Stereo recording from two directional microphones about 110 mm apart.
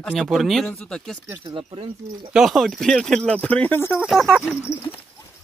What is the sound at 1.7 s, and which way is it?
Speech, 55° right (ahead or behind).